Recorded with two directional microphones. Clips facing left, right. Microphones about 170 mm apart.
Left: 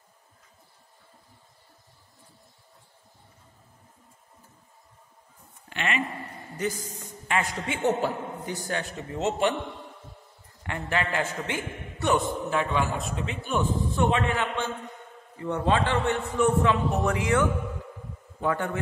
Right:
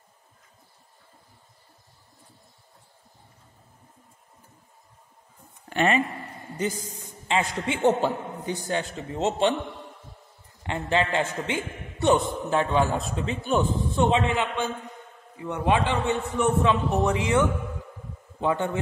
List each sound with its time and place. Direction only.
5.7 s speech: 40° right (ahead or behind)
7.2 s a man's voice: 25° right (ahead or behind)
10.6 s a man's voice: 25° right (ahead or behind)
14.1 s a man's voice: 20° right (ahead or behind)